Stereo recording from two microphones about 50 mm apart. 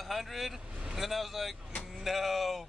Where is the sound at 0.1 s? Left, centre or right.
Centre.